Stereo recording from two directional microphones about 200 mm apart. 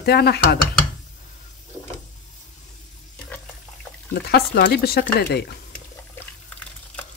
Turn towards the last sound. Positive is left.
turn(degrees=50)  # may be behind; listen again after turning